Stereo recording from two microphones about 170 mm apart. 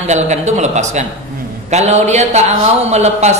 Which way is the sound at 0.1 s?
45° right (ahead or behind).